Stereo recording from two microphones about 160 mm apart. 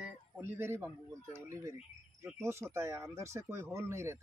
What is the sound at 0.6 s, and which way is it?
Speech, 15° right (ahead or behind).